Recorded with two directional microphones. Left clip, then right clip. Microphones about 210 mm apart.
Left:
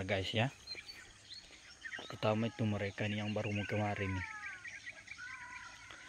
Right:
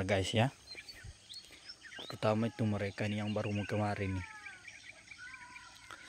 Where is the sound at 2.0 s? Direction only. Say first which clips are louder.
Right 2 dB; 20° right (ahead or behind).